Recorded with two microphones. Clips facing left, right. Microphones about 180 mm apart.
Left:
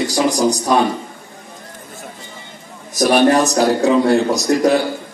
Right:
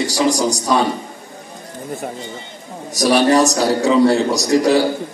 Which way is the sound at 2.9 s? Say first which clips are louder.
Left 1 dB; 55° left (ahead or behind).